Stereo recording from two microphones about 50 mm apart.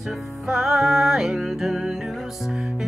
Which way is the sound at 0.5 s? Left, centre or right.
Centre.